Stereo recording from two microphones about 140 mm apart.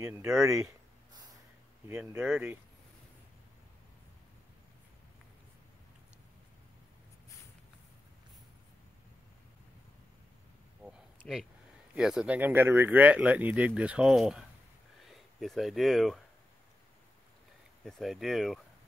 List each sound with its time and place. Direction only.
0.0 s speech: 20° right (ahead or behind)
1.9 s speech: 10° right (ahead or behind)
10.8 s a sound: 5° right (ahead or behind)
11.9 s speech: 5° right (ahead or behind)
17.8 s speech: centre (ahead or behind)